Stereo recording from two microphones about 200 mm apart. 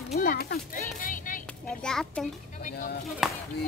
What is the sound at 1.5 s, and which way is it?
Speech, 5° left (ahead or behind).